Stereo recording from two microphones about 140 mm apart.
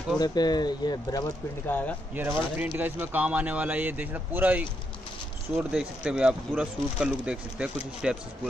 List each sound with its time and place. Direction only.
0.2 s speech: 30° left (ahead or behind)
1.7 s speech: 10° left (ahead or behind)
2.1 s speech: 15° right (ahead or behind)